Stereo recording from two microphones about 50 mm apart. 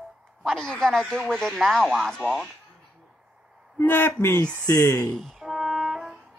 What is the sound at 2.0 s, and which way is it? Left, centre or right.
Speech, centre.